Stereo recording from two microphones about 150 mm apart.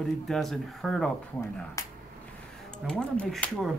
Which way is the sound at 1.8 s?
20° left (ahead or behind).